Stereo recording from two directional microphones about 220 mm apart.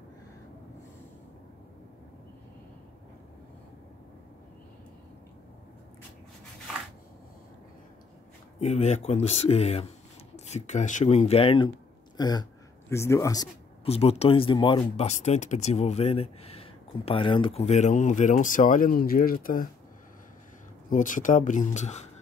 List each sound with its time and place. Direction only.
8.5 s speech: 30° left (ahead or behind)
13.8 s speech: 25° left (ahead or behind)
20.9 s speech: 35° left (ahead or behind)